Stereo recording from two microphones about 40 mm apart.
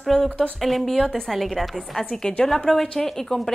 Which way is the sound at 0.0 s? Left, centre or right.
Centre.